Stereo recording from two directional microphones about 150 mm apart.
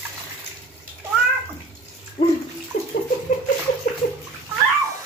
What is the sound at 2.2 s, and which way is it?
Bathtub, 30° left (ahead or behind).